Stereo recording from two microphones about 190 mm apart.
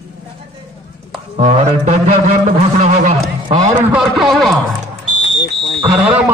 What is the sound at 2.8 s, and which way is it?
Speech, 35° right (ahead or behind).